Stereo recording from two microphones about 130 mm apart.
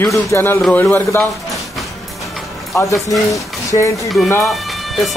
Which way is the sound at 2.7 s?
25° left (ahead or behind).